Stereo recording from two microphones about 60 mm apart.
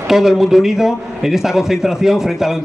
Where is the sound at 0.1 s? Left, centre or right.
Centre.